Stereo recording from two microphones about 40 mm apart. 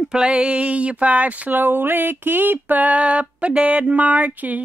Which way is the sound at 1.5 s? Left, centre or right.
Right.